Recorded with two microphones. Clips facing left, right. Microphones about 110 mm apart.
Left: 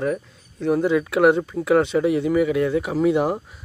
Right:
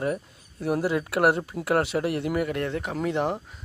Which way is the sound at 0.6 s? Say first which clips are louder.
Left 6 dB; 5° right (ahead or behind).